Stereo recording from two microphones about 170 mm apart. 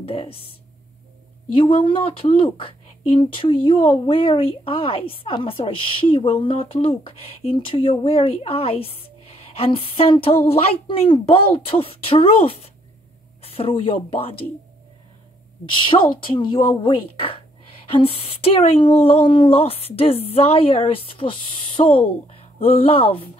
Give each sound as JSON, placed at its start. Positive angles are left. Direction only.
{"t": 0.0, "sound": "speech", "side_deg": 35}
{"t": 1.5, "sound": "speech", "side_deg": 30}
{"t": 15.8, "sound": "speech", "side_deg": 30}